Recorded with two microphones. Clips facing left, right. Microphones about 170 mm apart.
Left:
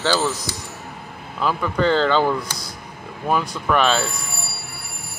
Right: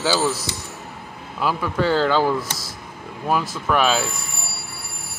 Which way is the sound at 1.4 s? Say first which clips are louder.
Left 1 dB; 5° right (ahead or behind).